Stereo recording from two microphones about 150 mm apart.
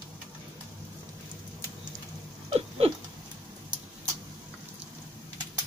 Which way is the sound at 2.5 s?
40° right (ahead or behind).